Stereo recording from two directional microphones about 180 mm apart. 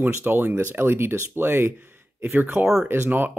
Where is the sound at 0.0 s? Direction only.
10° right (ahead or behind).